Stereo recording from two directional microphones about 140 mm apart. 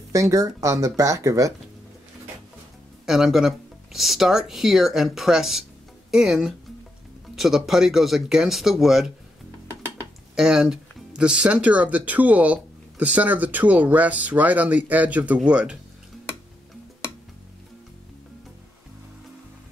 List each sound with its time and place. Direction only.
0.1 s speech: 25° right (ahead or behind)
3.1 s speech: centre (ahead or behind)
10.3 s speech: 5° right (ahead or behind)